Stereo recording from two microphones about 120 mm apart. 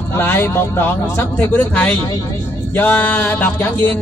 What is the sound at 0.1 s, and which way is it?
A man's voice, 20° left (ahead or behind).